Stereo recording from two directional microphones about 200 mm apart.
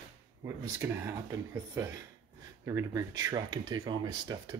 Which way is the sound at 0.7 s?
10° right (ahead or behind).